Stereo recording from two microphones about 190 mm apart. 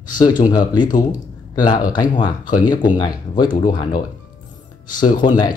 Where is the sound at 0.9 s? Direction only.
45° left (ahead or behind).